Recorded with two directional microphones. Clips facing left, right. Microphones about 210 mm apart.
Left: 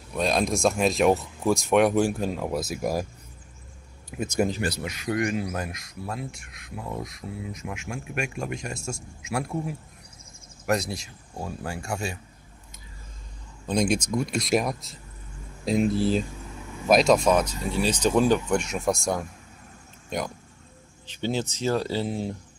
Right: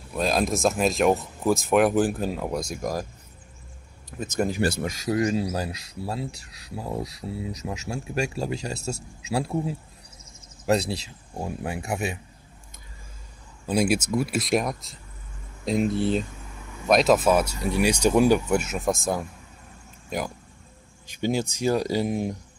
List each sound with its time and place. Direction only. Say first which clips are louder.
0.1 s speech: even; centre (ahead or behind)
4.2 s speech: left 1 dB; 10° left (ahead or behind)
4.6 s speech: right 4 dB; 50° right (ahead or behind)
5.1 s speech: right 2 dB; 30° right (ahead or behind)
13.7 s speech: right 1 dB; 5° right (ahead or behind)